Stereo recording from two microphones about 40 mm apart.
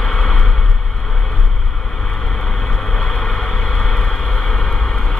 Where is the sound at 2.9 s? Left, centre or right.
Centre.